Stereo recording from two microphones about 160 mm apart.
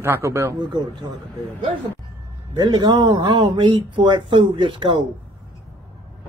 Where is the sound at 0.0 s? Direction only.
15° right (ahead or behind).